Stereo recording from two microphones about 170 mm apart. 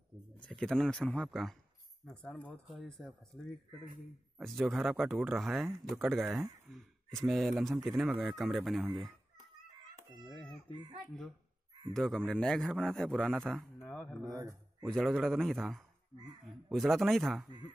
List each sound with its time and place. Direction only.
0.6 s a man's voice: 5° left (ahead or behind)
4.4 s a man's voice: centre (ahead or behind)
10.7 s speech: 25° right (ahead or behind)
11.9 s a man's voice: centre (ahead or behind)
14.2 s speech: 20° right (ahead or behind)
14.9 s a man's voice: 5° left (ahead or behind)